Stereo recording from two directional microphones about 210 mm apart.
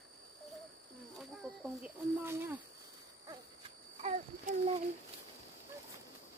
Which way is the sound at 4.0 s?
30° right (ahead or behind).